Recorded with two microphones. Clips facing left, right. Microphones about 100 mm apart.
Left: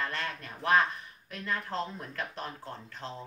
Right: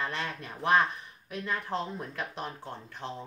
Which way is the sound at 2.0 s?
15° right (ahead or behind).